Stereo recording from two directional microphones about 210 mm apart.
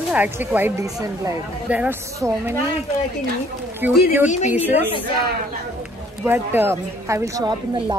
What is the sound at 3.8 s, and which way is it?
A woman's voice, 10° right (ahead or behind).